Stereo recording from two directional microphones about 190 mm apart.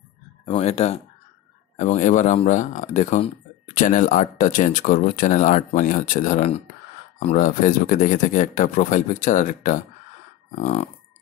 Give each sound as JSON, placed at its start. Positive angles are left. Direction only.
{"t": 0.5, "sound": "speech", "side_deg": 35}